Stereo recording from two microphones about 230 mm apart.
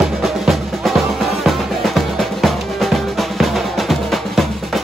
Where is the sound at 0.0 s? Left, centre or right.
Centre.